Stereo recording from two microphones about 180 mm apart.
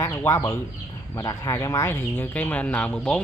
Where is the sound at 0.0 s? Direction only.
15° left (ahead or behind).